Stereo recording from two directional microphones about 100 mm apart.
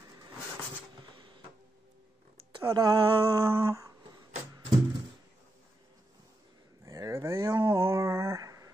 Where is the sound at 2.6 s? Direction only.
35° right (ahead or behind).